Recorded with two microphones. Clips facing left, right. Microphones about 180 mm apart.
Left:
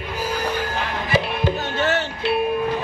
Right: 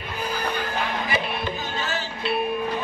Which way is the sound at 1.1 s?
70° left (ahead or behind).